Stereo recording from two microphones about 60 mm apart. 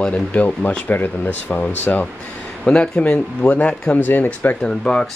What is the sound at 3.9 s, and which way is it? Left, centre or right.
Speech, left.